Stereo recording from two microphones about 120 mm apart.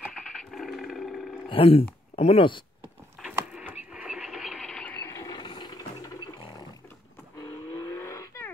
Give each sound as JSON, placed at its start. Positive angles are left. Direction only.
{"t": 0.3, "sound": "a sound", "side_deg": 0}
{"t": 1.5, "sound": "speech", "side_deg": 50}
{"t": 3.3, "sound": "a sound", "side_deg": -15}
{"t": 4.9, "sound": "mechanisms", "side_deg": 20}
{"t": 5.2, "sound": "ratchet", "side_deg": 35}
{"t": 7.3, "sound": "vehicle", "side_deg": 30}